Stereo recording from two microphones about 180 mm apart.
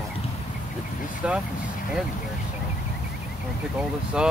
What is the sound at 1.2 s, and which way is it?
Vehicle, 5° right (ahead or behind).